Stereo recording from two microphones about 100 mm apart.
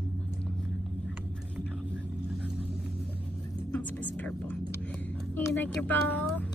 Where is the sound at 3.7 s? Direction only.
15° left (ahead or behind).